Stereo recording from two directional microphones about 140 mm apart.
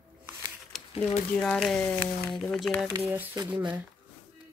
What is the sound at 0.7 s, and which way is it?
Speech, 5° left (ahead or behind).